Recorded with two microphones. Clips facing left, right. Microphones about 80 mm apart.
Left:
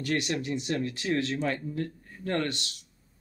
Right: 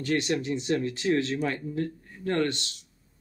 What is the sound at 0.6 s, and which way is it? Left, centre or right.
Speech, right.